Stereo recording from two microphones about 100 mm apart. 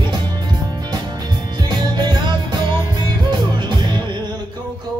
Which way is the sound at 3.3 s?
50° right (ahead or behind).